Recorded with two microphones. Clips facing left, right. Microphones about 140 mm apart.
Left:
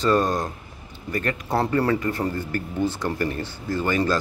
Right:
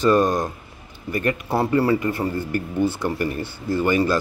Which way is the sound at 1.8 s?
5° right (ahead or behind).